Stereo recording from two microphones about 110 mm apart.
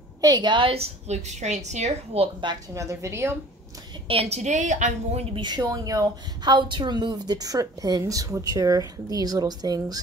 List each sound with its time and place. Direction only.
0.2 s a woman's voice: 40° right (ahead or behind)
1.0 s a woman's voice: 90° right
2.7 s a woman's voice: 30° right (ahead or behind)
4.1 s a woman's voice: 70° right (ahead or behind); by 5.2 s 90° right
5.3 s a woman's voice: 40° right (ahead or behind)